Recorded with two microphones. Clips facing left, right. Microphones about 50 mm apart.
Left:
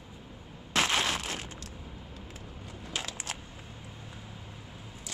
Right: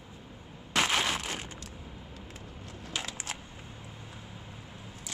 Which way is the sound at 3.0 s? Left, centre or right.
Centre.